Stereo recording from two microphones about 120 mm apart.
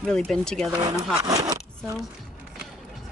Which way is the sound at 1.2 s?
30° right (ahead or behind).